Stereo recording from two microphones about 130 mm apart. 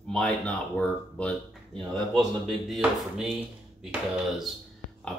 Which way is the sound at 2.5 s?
Centre (ahead or behind).